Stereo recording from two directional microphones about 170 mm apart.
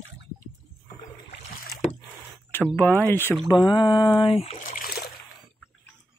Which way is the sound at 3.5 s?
25° left (ahead or behind).